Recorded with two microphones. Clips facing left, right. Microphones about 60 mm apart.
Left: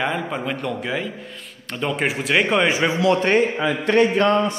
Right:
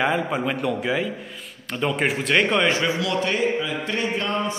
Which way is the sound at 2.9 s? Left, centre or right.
Left.